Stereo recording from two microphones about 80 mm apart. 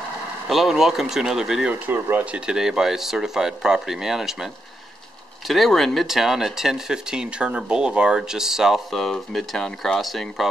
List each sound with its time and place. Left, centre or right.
0.5 s speech: centre
2.0 s speech: right
2.3 s speech: centre
5.5 s speech: centre